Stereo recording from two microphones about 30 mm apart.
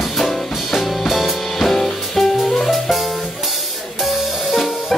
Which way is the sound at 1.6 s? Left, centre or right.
Centre.